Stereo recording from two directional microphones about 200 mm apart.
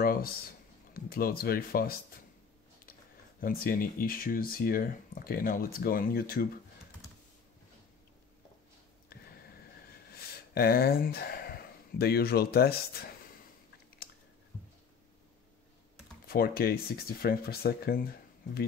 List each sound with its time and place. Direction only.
0.0 s a sound: 50° left (ahead or behind)
0.9 s speech: 50° left (ahead or behind)
10.5 s speech: 50° left (ahead or behind)
16.3 s speech: 50° left (ahead or behind)